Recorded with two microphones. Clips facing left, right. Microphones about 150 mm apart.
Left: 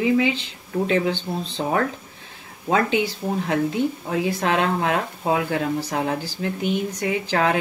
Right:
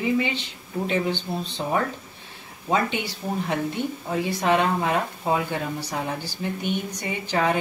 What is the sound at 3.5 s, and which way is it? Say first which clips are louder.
Speech: left 7 dB; 90° left.